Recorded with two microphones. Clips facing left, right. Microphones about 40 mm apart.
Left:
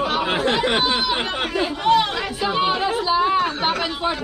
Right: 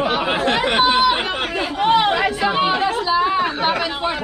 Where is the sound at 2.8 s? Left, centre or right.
Centre.